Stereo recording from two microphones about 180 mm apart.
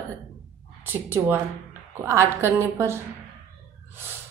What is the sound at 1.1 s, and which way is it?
A woman's voice, 15° right (ahead or behind).